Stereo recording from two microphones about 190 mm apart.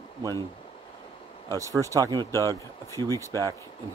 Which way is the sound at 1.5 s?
15° right (ahead or behind).